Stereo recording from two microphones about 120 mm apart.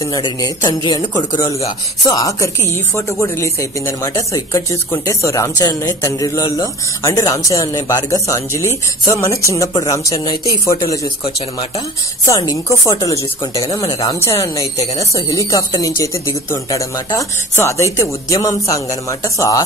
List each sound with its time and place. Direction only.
0.1 s speech: 35° left (ahead or behind)
12.3 s speech: 30° left (ahead or behind)